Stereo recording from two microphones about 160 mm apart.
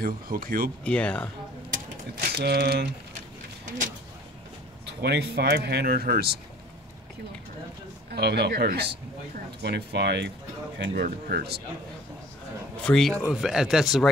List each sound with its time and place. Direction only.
0.0 s speech: 65° right (ahead or behind)
0.8 s speech: 5° left (ahead or behind)
1.7 s speech: 55° right (ahead or behind); by 2.9 s 90° right
3.6 s speech: 50° right (ahead or behind)
5.0 s speech: 90° right
8.1 s speech: 85° right
12.8 s speech: 5° left (ahead or behind)